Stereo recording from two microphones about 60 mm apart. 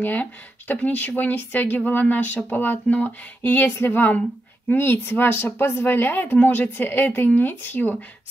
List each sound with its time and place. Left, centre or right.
0.0 s speech: left